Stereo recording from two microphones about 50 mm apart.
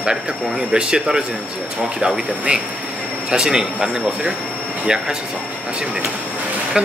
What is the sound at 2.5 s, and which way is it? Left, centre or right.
Speech, right.